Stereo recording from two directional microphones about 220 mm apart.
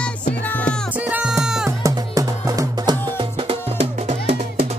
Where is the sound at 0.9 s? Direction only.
5° right (ahead or behind).